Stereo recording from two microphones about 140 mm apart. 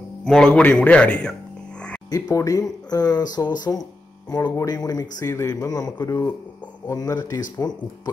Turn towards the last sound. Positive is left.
turn(degrees=30)  # may be behind; listen again after turning